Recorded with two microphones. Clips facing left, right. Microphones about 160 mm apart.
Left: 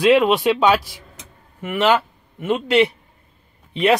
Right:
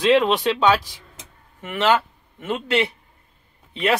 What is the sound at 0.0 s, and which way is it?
Speech, 10° left (ahead or behind).